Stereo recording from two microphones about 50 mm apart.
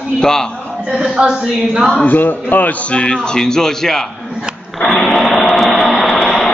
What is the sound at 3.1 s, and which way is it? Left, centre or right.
Speech, centre.